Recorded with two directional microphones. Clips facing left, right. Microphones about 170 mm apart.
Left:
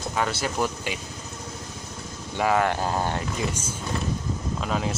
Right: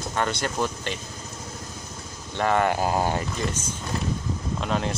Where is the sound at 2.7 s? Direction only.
10° right (ahead or behind).